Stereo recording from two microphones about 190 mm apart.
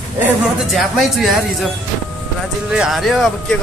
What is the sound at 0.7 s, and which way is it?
Speech, centre (ahead or behind).